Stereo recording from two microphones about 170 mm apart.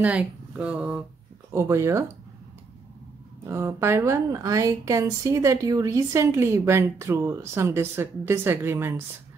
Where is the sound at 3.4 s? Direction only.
15° right (ahead or behind).